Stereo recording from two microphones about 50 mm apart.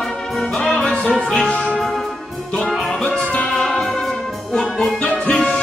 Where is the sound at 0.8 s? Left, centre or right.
Left.